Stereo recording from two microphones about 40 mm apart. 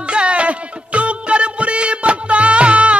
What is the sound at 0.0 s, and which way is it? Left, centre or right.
Music, right.